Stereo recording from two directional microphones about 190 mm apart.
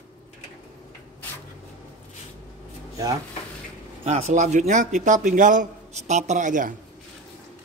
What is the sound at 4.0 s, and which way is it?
A man's voice, 35° right (ahead or behind).